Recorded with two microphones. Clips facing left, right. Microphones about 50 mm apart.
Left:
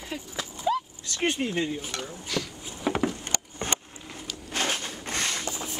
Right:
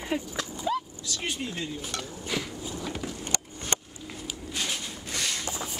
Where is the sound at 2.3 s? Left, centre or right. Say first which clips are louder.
Left 1 dB; centre.